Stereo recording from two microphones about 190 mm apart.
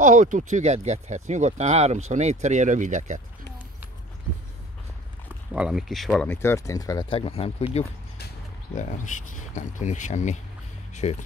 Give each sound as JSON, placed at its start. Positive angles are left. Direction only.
{"t": 0.0, "sound": "speech", "side_deg": -40}
{"t": 5.5, "sound": "speech", "side_deg": -5}
{"t": 8.7, "sound": "speech", "side_deg": 40}